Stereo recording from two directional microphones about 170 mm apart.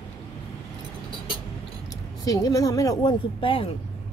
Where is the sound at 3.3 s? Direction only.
30° left (ahead or behind).